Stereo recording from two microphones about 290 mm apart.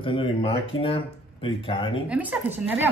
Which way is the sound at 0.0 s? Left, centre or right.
Centre.